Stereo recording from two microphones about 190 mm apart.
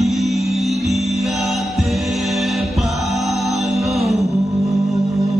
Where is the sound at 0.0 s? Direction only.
Centre (ahead or behind).